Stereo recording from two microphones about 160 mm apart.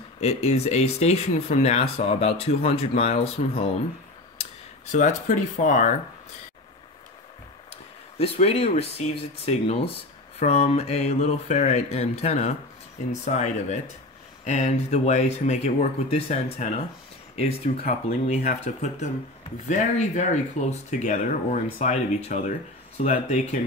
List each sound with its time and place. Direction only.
0.2 s speech: 40° left (ahead or behind)
4.9 s speech: 50° left (ahead or behind)
8.2 s speech: 40° left (ahead or behind)